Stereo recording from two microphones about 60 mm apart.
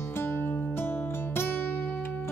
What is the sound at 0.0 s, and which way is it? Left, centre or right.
Music, left.